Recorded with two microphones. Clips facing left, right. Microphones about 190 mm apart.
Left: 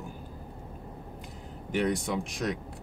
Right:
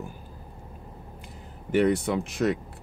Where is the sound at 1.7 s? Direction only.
60° right (ahead or behind).